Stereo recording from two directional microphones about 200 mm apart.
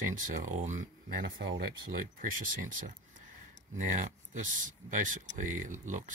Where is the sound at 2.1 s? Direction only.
45° right (ahead or behind).